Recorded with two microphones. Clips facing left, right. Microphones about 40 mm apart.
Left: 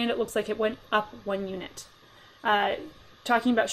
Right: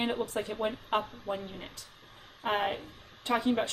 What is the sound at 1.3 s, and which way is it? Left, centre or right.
Speech, left.